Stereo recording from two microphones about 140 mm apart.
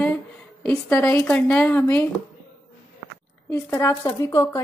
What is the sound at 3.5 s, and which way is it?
Speech, 15° left (ahead or behind).